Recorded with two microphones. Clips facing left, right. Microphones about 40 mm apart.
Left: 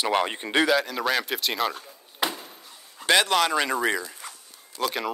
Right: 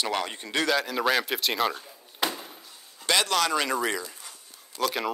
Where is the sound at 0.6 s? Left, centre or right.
Centre.